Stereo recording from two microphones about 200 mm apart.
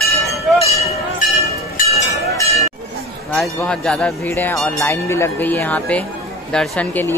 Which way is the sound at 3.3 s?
5° left (ahead or behind).